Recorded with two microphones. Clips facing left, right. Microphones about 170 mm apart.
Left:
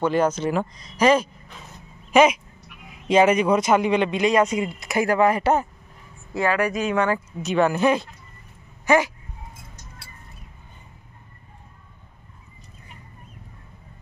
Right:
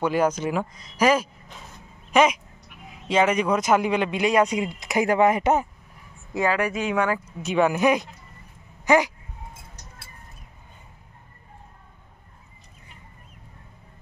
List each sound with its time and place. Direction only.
0.0 s speech: 10° right (ahead or behind)